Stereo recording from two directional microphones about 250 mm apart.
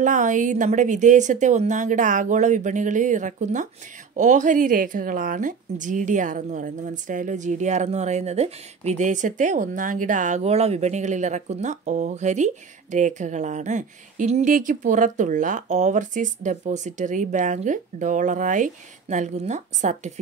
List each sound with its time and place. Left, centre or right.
0.0 s speech: right